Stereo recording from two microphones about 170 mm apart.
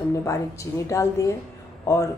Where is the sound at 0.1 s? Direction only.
15° left (ahead or behind).